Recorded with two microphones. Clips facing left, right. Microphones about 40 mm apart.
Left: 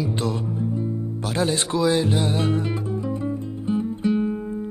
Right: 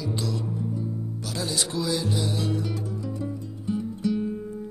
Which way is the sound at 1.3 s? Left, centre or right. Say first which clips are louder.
Left 7 dB; left.